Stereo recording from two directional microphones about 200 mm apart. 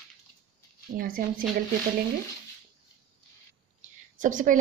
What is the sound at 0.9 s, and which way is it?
Speech, 45° right (ahead or behind).